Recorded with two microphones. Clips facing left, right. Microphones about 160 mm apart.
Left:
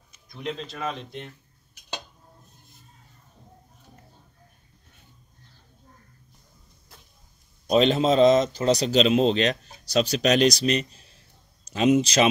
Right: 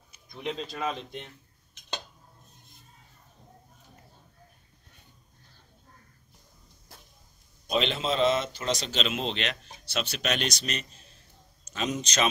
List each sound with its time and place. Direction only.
0.3 s speech: 5° right (ahead or behind)
7.7 s speech: 40° left (ahead or behind)